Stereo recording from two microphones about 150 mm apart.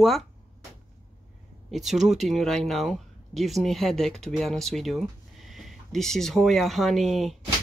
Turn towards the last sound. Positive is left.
turn(degrees=0)  # may be behind; listen again after turning